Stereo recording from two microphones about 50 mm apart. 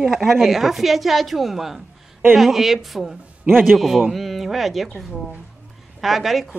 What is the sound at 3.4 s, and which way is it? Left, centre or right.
Speech, right.